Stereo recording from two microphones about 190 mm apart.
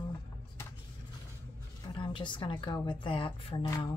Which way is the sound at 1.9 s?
25° left (ahead or behind).